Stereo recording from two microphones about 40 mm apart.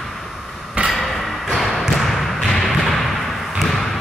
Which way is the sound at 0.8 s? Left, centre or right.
Right.